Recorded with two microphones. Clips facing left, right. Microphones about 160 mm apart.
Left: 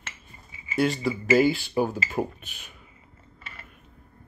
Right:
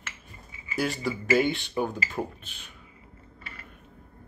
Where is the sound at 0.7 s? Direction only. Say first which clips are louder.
Left 4 dB; centre (ahead or behind).